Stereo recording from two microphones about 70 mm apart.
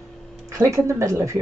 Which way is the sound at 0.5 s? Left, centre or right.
Right.